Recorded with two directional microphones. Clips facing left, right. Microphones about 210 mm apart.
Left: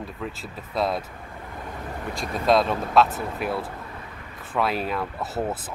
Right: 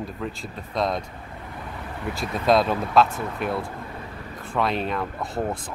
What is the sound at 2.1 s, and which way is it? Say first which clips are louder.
Speech: right 1 dB; centre (ahead or behind).